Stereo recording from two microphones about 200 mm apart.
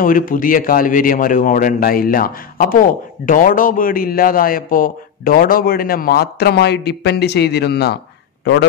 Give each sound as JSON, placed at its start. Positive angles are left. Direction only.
{"t": 0.0, "sound": "a man's voice", "side_deg": 45}